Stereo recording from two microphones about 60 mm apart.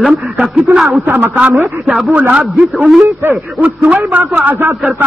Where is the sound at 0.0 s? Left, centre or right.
Centre.